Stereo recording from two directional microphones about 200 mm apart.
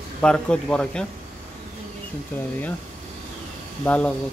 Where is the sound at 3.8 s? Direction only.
5° left (ahead or behind).